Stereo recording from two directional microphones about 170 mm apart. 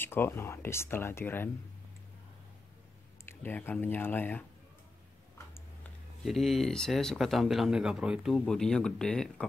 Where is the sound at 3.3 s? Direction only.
10° left (ahead or behind).